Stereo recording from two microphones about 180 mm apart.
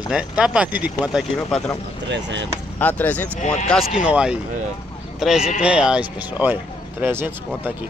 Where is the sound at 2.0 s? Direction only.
75° right (ahead or behind).